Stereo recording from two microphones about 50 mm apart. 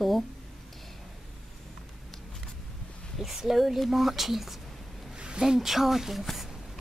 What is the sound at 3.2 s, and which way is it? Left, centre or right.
A woman's voice, centre.